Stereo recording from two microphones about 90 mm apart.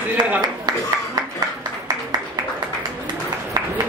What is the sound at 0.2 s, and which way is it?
Speech, 45° right (ahead or behind).